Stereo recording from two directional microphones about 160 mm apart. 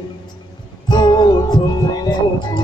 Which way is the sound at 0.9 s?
25° left (ahead or behind).